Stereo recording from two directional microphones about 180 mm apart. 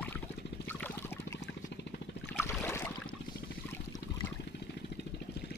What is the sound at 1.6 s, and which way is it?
Vehicle, 70° left (ahead or behind).